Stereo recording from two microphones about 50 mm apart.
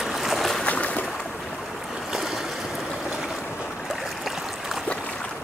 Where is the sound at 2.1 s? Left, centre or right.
Centre.